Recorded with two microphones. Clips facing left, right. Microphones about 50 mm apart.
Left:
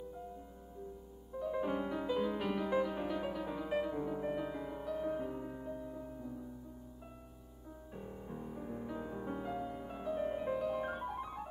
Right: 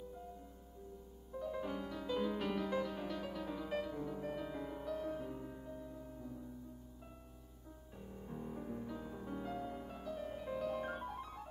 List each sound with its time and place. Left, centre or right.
1.3 s music: centre
2.1 s music: centre
8.0 s music: centre
8.7 s music: centre
10.5 s music: centre